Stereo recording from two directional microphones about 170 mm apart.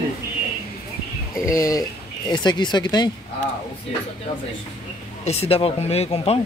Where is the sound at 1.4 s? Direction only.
20° left (ahead or behind).